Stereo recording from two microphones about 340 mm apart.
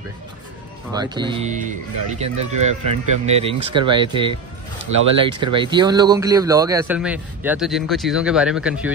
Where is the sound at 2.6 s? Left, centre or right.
Right.